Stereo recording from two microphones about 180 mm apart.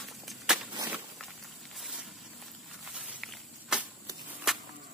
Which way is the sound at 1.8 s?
Centre (ahead or behind).